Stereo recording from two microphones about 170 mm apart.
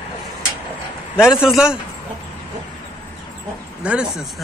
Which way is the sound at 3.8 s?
5° right (ahead or behind).